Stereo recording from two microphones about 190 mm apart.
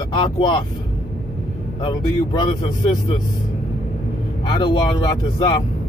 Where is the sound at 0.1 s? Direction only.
25° left (ahead or behind).